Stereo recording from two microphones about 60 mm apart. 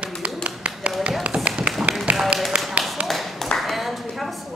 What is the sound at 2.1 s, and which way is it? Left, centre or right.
Tap, right.